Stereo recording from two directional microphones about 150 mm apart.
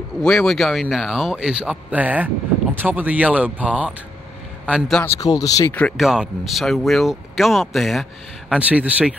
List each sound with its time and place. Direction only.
0.2 s speech: 5° left (ahead or behind)
5.0 s speech: 20° left (ahead or behind)
5.7 s speech: 10° left (ahead or behind)
5.9 s speech: centre (ahead or behind)